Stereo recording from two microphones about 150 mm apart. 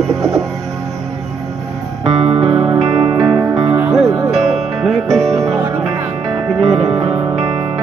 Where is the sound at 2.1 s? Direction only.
40° right (ahead or behind).